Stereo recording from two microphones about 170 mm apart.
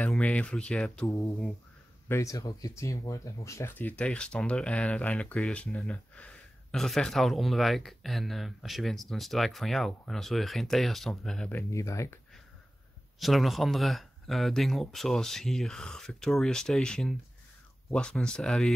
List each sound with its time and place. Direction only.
0.0 s speech: 5° left (ahead or behind)
1.0 s speech: 15° left (ahead or behind)
11.5 s speech: 15° left (ahead or behind)
13.2 s speech: centre (ahead or behind)